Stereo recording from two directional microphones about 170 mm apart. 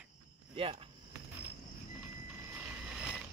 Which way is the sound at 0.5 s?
35° right (ahead or behind).